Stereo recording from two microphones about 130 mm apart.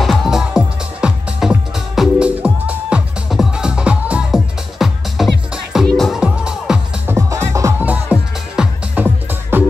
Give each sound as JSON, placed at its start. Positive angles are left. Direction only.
{"t": 0.0, "sound": "music", "side_deg": 0}
{"t": 7.1, "sound": "music", "side_deg": -20}